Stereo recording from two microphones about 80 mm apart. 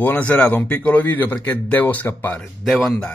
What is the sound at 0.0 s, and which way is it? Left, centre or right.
Speech, centre.